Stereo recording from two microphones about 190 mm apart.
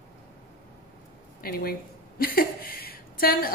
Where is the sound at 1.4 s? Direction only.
50° left (ahead or behind).